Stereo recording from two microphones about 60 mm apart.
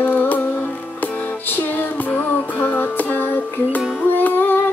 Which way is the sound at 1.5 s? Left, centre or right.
Left.